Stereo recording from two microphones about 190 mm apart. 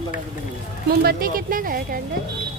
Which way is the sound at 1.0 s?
50° right (ahead or behind).